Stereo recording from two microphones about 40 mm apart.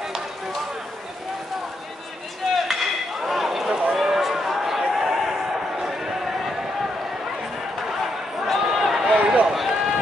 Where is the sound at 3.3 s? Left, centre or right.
Centre.